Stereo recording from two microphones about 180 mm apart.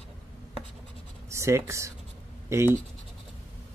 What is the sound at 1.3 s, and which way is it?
Speech, 15° right (ahead or behind).